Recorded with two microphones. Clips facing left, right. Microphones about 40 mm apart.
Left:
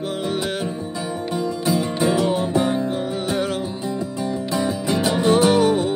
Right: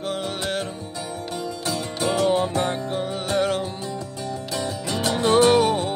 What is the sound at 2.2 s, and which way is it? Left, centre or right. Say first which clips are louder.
Music: left 1 dB; centre.